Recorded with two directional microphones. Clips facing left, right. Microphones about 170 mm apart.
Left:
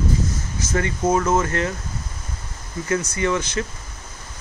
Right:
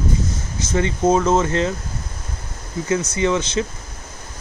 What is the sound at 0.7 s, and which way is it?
Speech, 25° right (ahead or behind).